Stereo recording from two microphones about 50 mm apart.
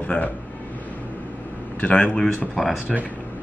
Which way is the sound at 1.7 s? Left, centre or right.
Left.